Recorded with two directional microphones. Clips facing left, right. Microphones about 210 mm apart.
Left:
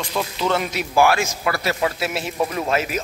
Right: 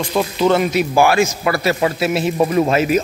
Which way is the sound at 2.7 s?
Centre (ahead or behind).